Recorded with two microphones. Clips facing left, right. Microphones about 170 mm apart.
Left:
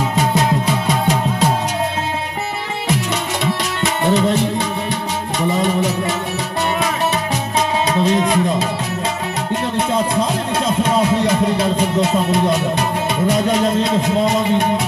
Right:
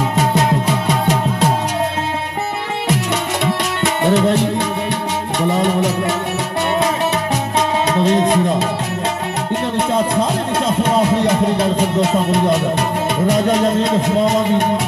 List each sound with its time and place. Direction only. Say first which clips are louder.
3.8 s music: right 1 dB; 60° right (ahead or behind)
7.5 s music: even; 60° right (ahead or behind)
8.2 s speech: right 2 dB; 50° right (ahead or behind)
11.5 s music: right 1 dB; 55° right (ahead or behind)